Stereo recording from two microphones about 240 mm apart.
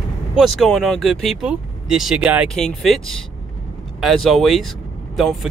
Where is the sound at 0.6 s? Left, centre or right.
Centre.